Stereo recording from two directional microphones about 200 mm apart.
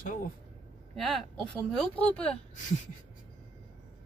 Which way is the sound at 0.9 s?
Centre (ahead or behind).